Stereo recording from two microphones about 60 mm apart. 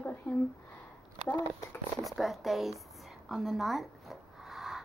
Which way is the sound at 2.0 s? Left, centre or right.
Centre.